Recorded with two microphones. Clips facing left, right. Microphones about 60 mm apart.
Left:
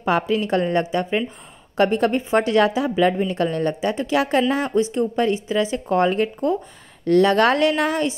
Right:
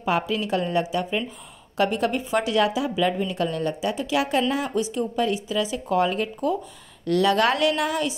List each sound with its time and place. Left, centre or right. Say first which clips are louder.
0.0 s a woman's voice: left 4 dB; left